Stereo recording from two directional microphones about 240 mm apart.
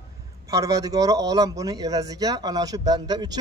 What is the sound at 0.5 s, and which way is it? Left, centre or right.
Speech, centre.